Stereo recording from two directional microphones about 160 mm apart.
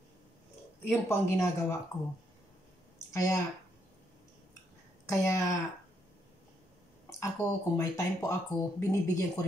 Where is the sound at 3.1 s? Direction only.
20° left (ahead or behind).